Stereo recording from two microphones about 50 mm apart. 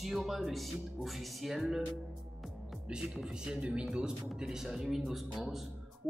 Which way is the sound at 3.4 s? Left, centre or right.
Right.